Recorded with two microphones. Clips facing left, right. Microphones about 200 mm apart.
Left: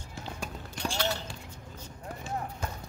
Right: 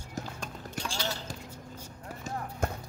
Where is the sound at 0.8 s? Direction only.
60° left (ahead or behind).